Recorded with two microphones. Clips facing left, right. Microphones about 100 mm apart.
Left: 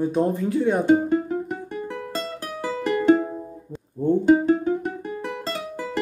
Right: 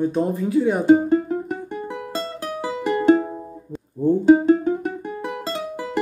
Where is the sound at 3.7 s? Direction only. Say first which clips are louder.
Right 2 dB; centre (ahead or behind).